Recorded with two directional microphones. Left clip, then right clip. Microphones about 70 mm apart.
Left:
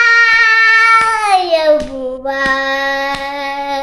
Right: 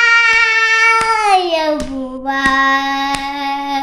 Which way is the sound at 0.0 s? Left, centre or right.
Left.